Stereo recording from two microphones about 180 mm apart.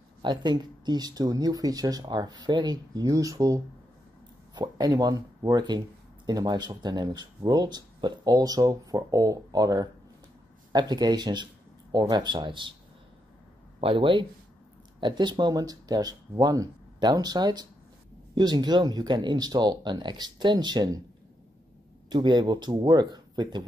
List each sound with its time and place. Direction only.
0.2 s speech: 25° right (ahead or behind)
13.7 s speech: 30° right (ahead or behind)
22.1 s speech: 25° right (ahead or behind)